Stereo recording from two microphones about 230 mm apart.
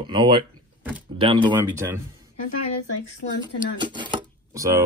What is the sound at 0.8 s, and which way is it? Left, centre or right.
Door, centre.